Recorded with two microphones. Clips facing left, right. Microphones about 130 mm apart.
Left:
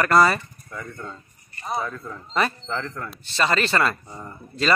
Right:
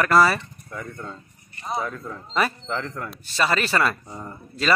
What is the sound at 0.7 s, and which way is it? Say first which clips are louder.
Speech: right 1 dB; 20° right (ahead or behind).